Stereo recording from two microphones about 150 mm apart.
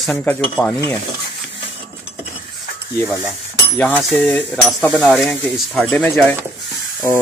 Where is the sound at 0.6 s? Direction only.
15° left (ahead or behind).